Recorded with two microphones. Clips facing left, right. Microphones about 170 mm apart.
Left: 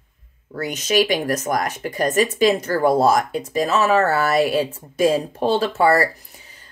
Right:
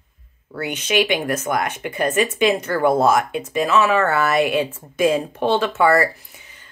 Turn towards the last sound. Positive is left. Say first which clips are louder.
# even
turn(degrees=35)  # may be behind; listen again after turning